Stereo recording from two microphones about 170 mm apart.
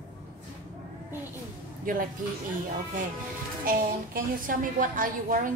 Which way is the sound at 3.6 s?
55° right (ahead or behind).